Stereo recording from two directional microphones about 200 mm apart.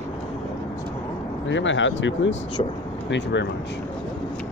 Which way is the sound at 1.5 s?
70° left (ahead or behind).